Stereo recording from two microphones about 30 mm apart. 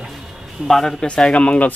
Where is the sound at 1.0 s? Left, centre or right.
Left.